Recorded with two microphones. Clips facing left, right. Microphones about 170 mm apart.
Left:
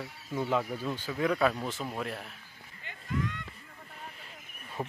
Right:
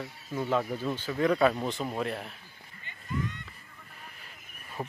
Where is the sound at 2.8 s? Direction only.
90° left.